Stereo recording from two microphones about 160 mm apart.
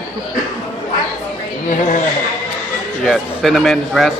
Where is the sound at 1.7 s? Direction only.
55° left (ahead or behind).